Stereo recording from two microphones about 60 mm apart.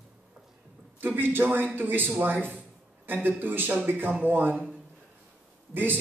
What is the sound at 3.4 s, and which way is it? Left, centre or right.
A man's voice, right.